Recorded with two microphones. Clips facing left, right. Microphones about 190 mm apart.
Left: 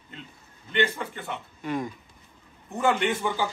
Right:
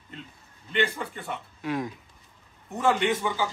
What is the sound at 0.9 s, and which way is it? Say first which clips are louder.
Speech: even; centre (ahead or behind).